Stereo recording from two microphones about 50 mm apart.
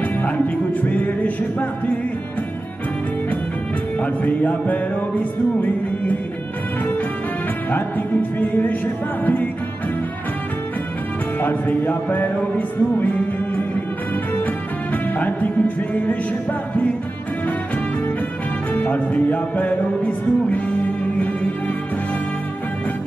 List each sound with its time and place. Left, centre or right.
0.7 s music: left
4.0 s music: left
7.7 s music: left
11.4 s music: left
18.7 s music: left